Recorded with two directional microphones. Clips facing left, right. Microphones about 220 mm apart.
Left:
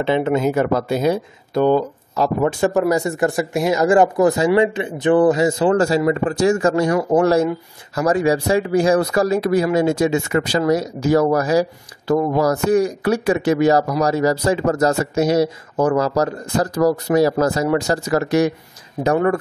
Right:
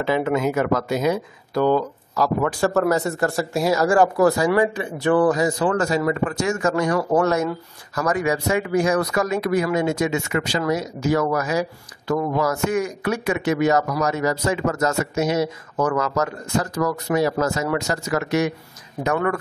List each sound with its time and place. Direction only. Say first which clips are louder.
0.0 s speech: left 3 dB; 25° left (ahead or behind)